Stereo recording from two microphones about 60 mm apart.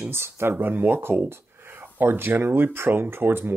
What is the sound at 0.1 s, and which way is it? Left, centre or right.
Speech, right.